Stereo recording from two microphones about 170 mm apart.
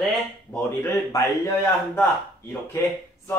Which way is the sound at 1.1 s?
20° left (ahead or behind).